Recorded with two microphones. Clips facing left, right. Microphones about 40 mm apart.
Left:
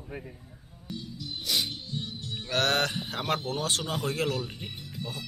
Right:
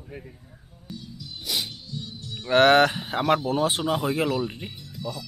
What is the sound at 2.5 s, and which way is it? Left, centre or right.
Speech, right.